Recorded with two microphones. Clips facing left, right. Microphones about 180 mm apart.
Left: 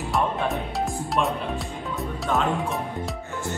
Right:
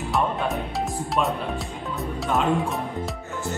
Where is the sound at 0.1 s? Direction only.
Centre (ahead or behind).